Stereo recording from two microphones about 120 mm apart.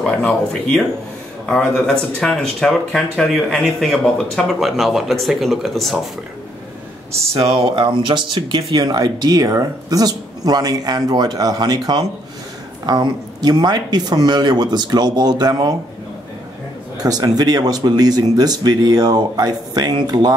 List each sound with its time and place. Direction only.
0.0 s speech: 10° left (ahead or behind)
7.7 s speech: 40° right (ahead or behind)
17.0 s speech: 35° right (ahead or behind)